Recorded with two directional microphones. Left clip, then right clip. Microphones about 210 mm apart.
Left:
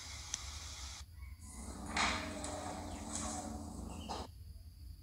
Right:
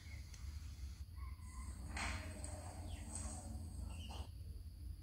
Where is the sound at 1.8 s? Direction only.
40° left (ahead or behind).